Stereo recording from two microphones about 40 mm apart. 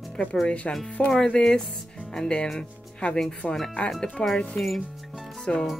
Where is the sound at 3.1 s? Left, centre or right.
Centre.